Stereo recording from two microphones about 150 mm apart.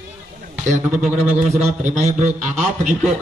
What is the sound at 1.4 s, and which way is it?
A man's voice, 50° right (ahead or behind).